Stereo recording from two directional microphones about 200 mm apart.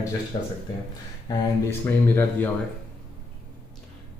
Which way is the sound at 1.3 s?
20° left (ahead or behind).